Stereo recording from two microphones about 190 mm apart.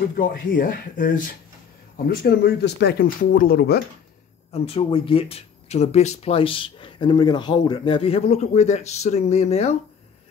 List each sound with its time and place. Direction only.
0.1 s speech: 45° left (ahead or behind)
2.0 s speech: 60° left (ahead or behind)
4.5 s speech: 30° left (ahead or behind)